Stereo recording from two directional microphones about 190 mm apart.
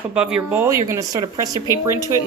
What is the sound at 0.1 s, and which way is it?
Speech, 5° right (ahead or behind).